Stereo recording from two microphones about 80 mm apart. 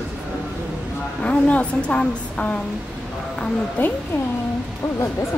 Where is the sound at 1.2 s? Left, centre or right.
Centre.